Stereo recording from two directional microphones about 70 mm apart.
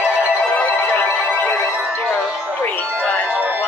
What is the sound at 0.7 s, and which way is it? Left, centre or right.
Music, left.